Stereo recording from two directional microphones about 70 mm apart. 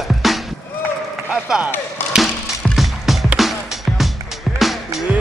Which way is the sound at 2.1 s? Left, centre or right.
Centre.